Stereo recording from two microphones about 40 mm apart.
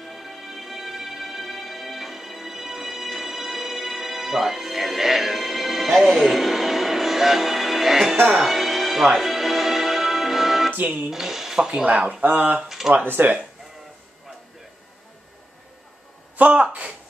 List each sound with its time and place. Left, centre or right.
0.0 s music: centre
10.7 s speech: right
11.1 s speech: centre
12.1 s speech: right
12.5 s speech: centre
12.9 s speech: right
16.5 s speech: right